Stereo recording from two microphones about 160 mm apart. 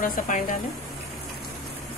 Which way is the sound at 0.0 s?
60° left (ahead or behind).